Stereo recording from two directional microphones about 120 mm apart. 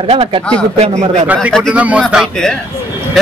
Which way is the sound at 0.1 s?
50° right (ahead or behind).